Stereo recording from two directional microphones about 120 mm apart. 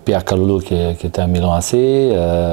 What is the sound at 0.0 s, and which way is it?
Speech, 10° right (ahead or behind).